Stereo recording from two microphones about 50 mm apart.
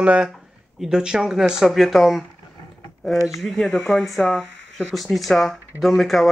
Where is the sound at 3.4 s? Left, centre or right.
Centre.